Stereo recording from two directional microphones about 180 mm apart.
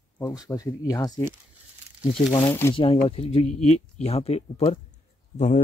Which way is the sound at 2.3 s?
15° left (ahead or behind).